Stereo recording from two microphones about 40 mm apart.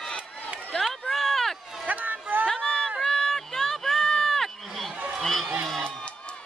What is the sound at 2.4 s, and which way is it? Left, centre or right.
Run, centre.